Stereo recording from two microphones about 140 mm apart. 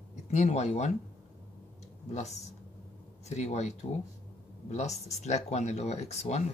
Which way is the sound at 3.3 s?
55° left (ahead or behind).